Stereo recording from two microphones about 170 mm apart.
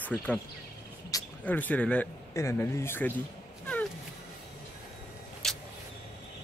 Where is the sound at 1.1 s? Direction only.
20° left (ahead or behind).